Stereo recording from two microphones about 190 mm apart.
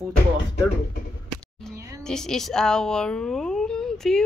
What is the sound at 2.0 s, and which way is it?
Speech, 5° left (ahead or behind).